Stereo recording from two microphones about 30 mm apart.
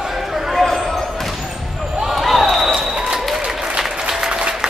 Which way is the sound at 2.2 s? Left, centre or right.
Centre.